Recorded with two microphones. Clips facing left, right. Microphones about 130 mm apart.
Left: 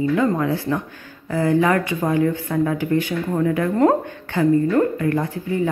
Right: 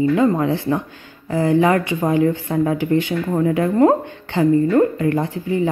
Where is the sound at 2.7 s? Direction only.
45° left (ahead or behind).